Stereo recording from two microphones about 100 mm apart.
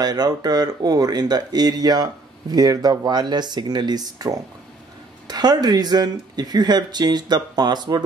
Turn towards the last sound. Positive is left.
turn(degrees=-45)  # may be behind; listen again after turning